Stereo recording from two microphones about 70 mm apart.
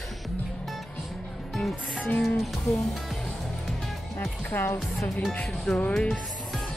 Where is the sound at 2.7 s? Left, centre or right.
Left.